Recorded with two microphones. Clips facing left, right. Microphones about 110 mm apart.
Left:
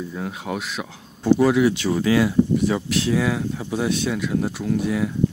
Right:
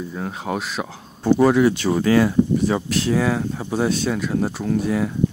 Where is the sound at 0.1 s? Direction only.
35° right (ahead or behind).